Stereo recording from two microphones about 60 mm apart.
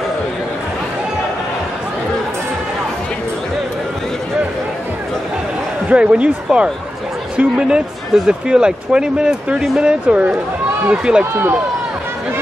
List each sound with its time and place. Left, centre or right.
5.9 s speech: centre